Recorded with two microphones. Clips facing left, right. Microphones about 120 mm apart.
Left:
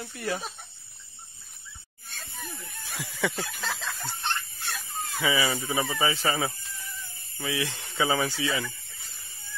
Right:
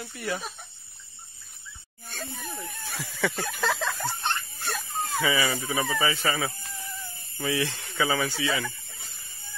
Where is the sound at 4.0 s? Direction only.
45° right (ahead or behind).